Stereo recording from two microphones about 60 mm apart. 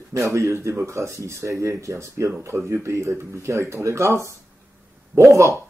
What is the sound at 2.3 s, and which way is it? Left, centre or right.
Speech, right.